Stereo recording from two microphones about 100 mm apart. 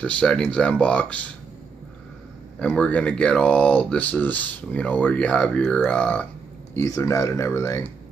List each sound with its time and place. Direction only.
0.0 s speech: 10° left (ahead or behind)
2.6 s speech: 10° left (ahead or behind)
6.9 s speech: 30° left (ahead or behind)